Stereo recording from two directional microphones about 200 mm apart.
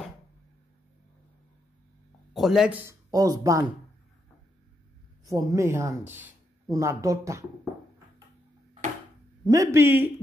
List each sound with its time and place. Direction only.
2.3 s speech: centre (ahead or behind)
2.9 s speech: 20° right (ahead or behind)
5.2 s speech: 15° right (ahead or behind)
9.5 s speech: 15° right (ahead or behind)